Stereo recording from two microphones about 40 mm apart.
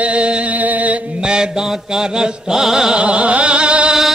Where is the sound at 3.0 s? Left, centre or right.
Right.